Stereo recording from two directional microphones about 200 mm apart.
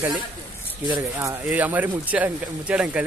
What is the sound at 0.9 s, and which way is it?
Speech, 10° right (ahead or behind).